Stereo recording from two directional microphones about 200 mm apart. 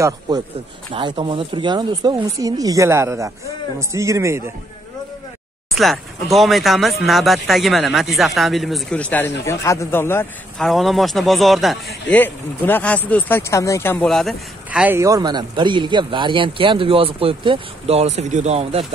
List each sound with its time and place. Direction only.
0.9 s speech: 25° right (ahead or behind)
5.8 s speech: centre (ahead or behind)
10.7 s speech: centre (ahead or behind); by 18.9 s 30° right (ahead or behind)